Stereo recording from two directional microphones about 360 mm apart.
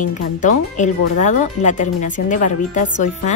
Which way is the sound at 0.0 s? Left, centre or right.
Left.